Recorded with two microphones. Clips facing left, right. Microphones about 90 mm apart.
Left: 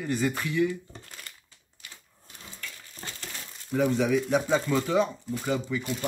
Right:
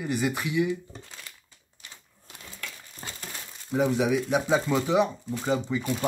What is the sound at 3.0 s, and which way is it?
Speech, 15° right (ahead or behind).